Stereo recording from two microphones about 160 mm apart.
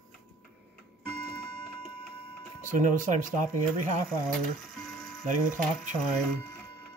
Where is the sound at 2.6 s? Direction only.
55° right (ahead or behind).